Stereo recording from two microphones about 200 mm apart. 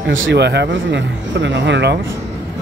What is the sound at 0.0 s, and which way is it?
Speech, 70° right (ahead or behind).